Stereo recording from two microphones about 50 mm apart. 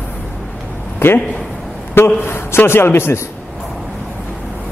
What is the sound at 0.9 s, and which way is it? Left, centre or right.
Speech, left.